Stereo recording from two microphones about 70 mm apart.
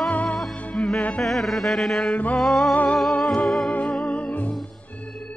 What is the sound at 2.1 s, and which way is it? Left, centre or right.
Music, left.